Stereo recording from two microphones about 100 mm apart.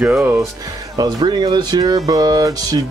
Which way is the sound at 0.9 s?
45° right (ahead or behind).